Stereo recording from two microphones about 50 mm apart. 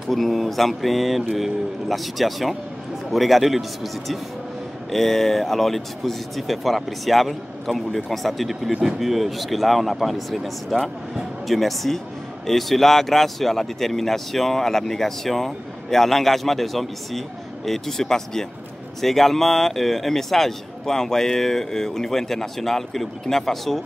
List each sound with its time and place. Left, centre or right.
0.1 s speech: centre